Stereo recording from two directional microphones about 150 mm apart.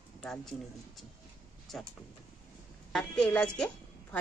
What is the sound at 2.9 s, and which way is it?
Speech, 5° left (ahead or behind).